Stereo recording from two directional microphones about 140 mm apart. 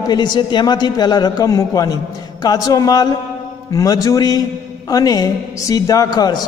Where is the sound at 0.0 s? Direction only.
30° left (ahead or behind).